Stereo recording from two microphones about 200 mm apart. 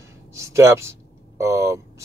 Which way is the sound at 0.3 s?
15° right (ahead or behind).